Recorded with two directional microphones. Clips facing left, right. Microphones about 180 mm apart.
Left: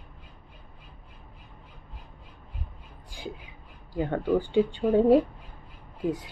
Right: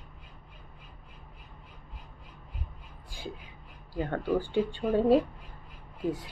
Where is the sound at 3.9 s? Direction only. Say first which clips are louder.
Left 3 dB; 15° left (ahead or behind).